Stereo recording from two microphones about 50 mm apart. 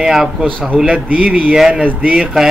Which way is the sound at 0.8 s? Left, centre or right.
Right.